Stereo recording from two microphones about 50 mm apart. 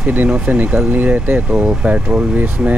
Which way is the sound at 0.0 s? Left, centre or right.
Right.